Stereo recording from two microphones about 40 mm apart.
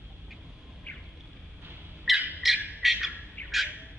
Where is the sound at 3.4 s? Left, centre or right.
Left.